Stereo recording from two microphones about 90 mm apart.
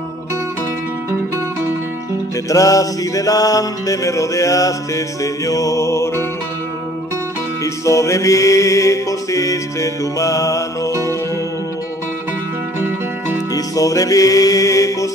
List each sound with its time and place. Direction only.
2.5 s music: 40° left (ahead or behind)
7.6 s music: 35° left (ahead or behind)
12.8 s music: 25° right (ahead or behind)
13.7 s music: 40° left (ahead or behind)